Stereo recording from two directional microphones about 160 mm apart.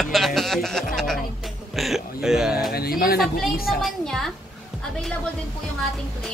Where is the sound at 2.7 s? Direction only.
70° left (ahead or behind).